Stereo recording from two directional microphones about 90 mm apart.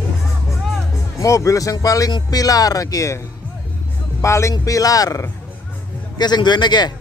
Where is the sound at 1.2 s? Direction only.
35° left (ahead or behind).